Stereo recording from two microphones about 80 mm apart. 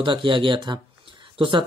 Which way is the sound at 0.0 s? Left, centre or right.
Right.